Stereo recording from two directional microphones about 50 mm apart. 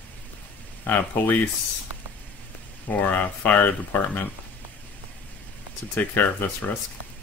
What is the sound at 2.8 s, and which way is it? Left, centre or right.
Speech, left.